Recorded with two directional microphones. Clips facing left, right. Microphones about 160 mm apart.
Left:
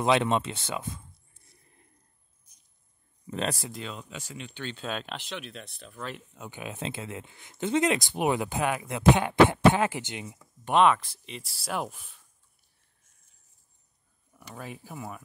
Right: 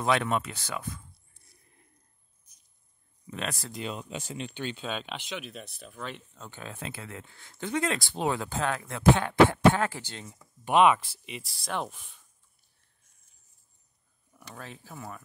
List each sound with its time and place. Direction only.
0.0 s speech: 20° left (ahead or behind)
3.3 s speech: 30° left (ahead or behind)
3.8 s speech: 15° right (ahead or behind)
4.7 s speech: centre (ahead or behind)
6.4 s speech: 15° left (ahead or behind)
10.4 s speech: 5° right (ahead or behind)
11.5 s speech: 5° left (ahead or behind)
14.4 s speech: 10° left (ahead or behind)